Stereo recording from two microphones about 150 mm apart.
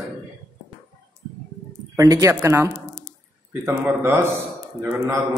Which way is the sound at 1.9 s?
20° right (ahead or behind).